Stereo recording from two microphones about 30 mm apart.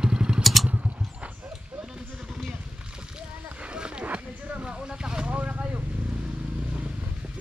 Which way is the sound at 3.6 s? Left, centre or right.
Right.